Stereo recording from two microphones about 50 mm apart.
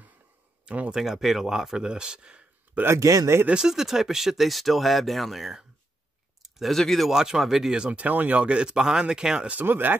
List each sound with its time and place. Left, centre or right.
0.7 s speech: right
0.9 s speech: centre
2.9 s speech: right
3.6 s speech: centre
7.1 s speech: centre
7.7 s speech: right
8.6 s speech: centre
9.5 s speech: right